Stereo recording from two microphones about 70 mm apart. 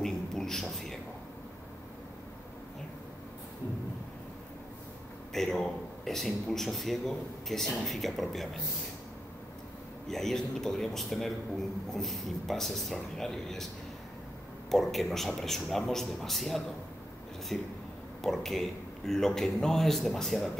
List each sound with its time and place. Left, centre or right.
0.0 s a sound: centre
5.3 s a man's voice: centre
10.0 s a man's voice: centre
14.7 s a man's voice: centre